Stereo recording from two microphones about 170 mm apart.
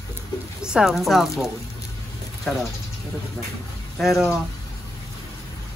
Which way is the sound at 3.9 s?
Centre (ahead or behind).